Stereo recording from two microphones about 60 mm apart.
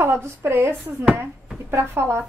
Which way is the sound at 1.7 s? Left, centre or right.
Right.